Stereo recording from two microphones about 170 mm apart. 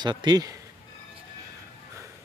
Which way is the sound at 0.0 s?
25° right (ahead or behind).